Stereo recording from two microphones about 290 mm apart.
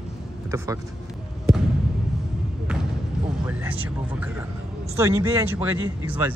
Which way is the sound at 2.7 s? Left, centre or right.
Centre.